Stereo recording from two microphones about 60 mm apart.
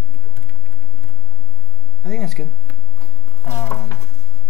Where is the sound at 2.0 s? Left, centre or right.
Centre.